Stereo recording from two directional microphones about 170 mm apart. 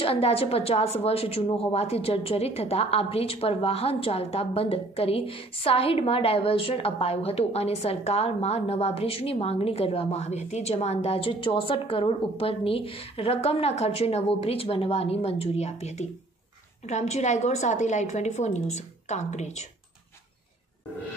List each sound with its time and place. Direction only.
0.0 s a woman's voice: 35° left (ahead or behind)